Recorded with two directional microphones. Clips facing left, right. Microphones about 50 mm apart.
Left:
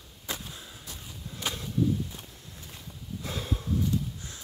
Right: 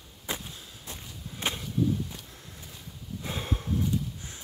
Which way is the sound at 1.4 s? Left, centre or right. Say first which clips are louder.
Right 2 dB; right.